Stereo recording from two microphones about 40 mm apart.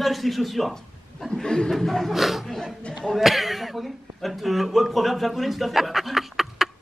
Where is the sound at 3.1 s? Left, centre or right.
Centre.